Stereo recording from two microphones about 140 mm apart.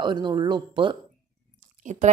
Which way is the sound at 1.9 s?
55° right (ahead or behind).